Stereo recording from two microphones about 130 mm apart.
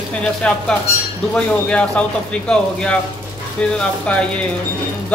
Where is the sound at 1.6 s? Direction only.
10° left (ahead or behind).